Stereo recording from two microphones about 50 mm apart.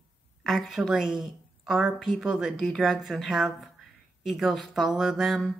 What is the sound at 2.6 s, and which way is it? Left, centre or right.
Speech, centre.